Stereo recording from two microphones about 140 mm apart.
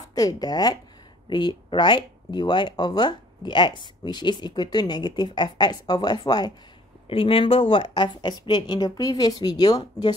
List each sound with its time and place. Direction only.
0.1 s speech: 25° left (ahead or behind)